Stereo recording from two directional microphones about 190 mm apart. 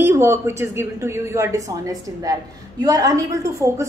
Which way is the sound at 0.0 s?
15° right (ahead or behind).